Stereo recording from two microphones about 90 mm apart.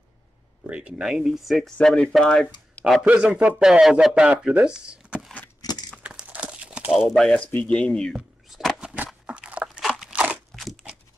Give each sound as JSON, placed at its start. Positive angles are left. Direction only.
{"t": 0.7, "sound": "speech", "side_deg": -15}
{"t": 3.1, "sound": "speech", "side_deg": -15}
{"t": 5.6, "sound": "crumpling", "side_deg": 45}
{"t": 6.0, "sound": "crumpling", "side_deg": -15}
{"t": 6.9, "sound": "speech", "side_deg": 0}
{"t": 7.3, "sound": "speech", "side_deg": 15}
{"t": 8.1, "sound": "a sound", "side_deg": 0}
{"t": 8.9, "sound": "a sound", "side_deg": -15}
{"t": 9.8, "sound": "crunch", "side_deg": -5}
{"t": 10.1, "sound": "crunch", "side_deg": -15}
{"t": 10.5, "sound": "crunch", "side_deg": 0}